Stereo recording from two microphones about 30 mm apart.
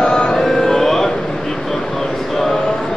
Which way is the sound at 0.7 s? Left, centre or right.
Centre.